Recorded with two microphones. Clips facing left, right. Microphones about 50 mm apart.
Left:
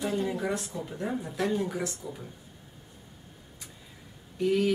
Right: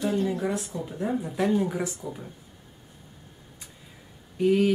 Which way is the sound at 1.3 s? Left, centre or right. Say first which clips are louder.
Right 4 dB; centre.